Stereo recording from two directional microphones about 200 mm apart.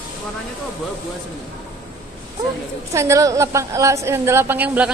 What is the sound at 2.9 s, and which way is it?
A woman's voice, 15° right (ahead or behind).